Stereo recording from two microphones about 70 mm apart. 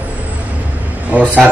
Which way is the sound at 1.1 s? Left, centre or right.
Centre.